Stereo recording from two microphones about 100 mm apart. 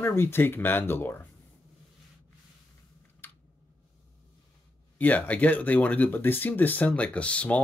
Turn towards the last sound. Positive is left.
turn(degrees=15)  # may be behind; listen again after turning